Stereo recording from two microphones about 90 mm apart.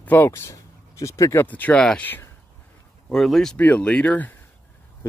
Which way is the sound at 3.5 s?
20° left (ahead or behind).